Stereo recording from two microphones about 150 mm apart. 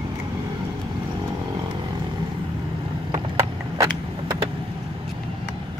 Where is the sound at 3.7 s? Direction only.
20° right (ahead or behind).